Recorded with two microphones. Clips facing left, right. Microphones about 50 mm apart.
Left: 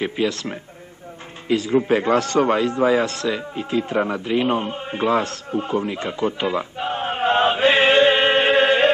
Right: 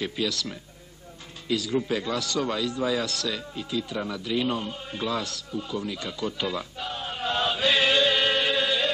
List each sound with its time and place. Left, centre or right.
0.0 s a man's voice: left